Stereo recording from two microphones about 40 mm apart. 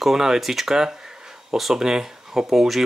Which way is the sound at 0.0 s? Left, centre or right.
Centre.